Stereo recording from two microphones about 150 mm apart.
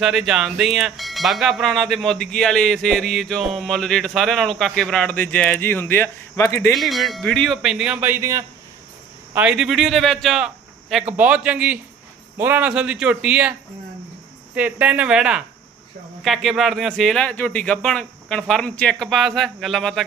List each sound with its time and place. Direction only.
0.0 s speech: 5° right (ahead or behind); by 6.7 s 15° left (ahead or behind)
6.7 s speech: centre (ahead or behind); by 8.5 s 20° right (ahead or behind)
9.3 s a man's voice: 10° right (ahead or behind)